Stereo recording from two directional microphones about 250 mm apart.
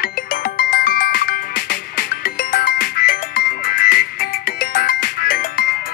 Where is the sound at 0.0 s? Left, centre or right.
Left.